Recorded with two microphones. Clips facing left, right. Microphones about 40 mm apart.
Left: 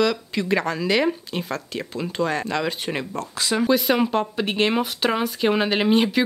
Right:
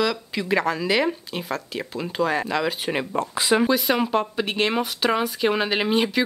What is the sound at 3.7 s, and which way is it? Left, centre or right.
Speech, centre.